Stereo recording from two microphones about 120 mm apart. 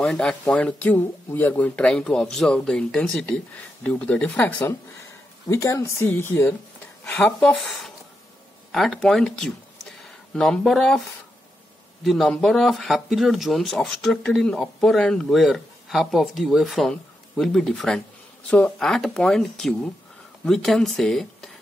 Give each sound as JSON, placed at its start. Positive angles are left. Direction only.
{"t": 0.0, "sound": "speech", "side_deg": 10}
{"t": 5.5, "sound": "speech", "side_deg": 25}
{"t": 7.1, "sound": "speech", "side_deg": 5}
{"t": 12.0, "sound": "speech", "side_deg": 0}